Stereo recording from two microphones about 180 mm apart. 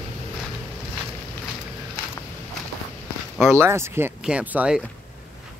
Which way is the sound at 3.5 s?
15° right (ahead or behind).